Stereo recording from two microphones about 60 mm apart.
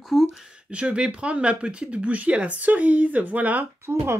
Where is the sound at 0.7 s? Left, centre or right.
Centre.